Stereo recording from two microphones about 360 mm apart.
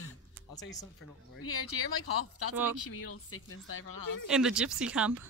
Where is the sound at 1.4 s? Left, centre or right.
Left.